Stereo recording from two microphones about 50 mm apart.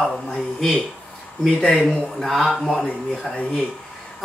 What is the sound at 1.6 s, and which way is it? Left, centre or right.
Speech, left.